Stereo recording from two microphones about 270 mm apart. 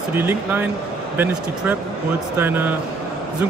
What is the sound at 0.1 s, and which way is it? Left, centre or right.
Speech, centre.